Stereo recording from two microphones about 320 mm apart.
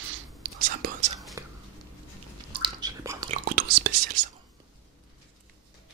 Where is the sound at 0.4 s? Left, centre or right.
Right.